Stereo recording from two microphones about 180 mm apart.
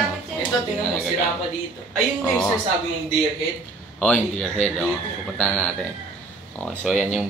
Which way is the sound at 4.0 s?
5° left (ahead or behind).